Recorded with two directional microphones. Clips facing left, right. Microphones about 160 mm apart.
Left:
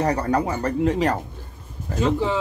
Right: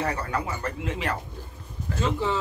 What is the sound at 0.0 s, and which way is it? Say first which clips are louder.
A man's voice: left 7 dB; 40° left (ahead or behind).